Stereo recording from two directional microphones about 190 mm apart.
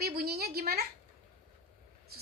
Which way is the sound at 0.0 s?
55° right (ahead or behind).